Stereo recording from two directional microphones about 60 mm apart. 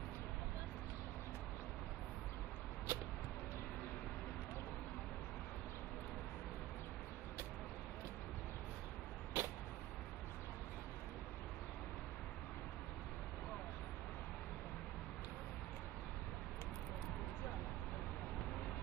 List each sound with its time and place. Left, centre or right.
2.9 s vehicle: right
9.3 s vehicle: right